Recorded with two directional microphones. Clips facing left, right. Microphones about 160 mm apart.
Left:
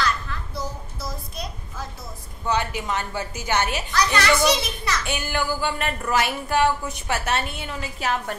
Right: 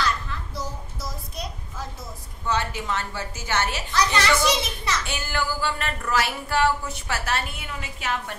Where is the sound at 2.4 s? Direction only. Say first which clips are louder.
Left 2 dB; 15° left (ahead or behind).